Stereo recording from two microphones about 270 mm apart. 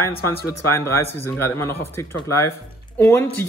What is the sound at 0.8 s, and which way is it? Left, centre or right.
Speech, centre.